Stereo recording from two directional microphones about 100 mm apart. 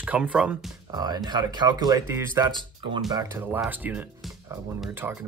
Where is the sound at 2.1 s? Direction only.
25° right (ahead or behind).